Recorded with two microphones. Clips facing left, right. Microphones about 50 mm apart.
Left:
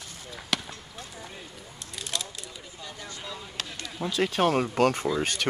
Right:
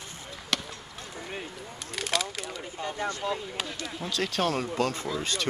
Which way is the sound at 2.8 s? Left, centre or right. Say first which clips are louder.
Right 10 dB; right.